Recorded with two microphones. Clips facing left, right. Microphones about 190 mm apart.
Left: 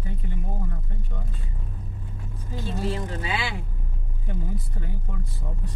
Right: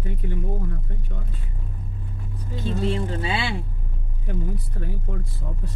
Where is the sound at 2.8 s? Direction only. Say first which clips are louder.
Right 4 dB; 30° right (ahead or behind).